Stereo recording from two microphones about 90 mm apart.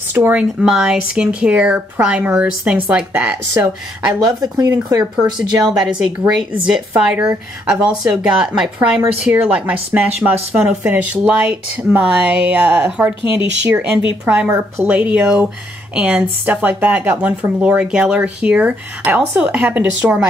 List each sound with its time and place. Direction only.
0.1 s speech: 15° right (ahead or behind)
4.3 s speech: 45° right (ahead or behind)
5.7 s speech: 10° right (ahead or behind)